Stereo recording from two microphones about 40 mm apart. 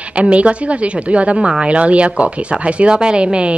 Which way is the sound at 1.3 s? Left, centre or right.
Centre.